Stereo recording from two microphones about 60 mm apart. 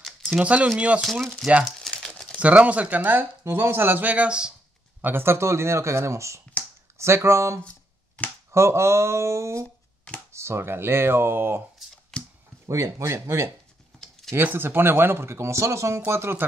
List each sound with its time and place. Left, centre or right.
0.3 s speech: centre
1.8 s crumpling: centre
2.3 s speech: right
3.4 s speech: right; by 4.6 s centre
5.0 s speech: right
12.1 s a sound: centre
12.6 s speech: right
13.9 s computer keyboard: centre
14.3 s speech: right
16.1 s speech: right